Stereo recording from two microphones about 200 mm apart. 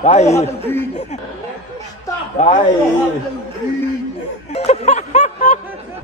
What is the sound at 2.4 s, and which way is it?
Speech, 35° left (ahead or behind).